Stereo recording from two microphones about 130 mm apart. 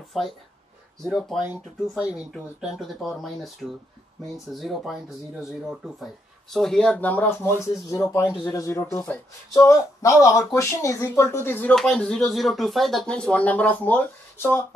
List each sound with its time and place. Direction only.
0.1 s speech: centre (ahead or behind)
1.5 s speech: 10° right (ahead or behind); by 8.8 s 25° left (ahead or behind)
8.9 s speech: 15° left (ahead or behind)
11.7 s speech: 5° left (ahead or behind)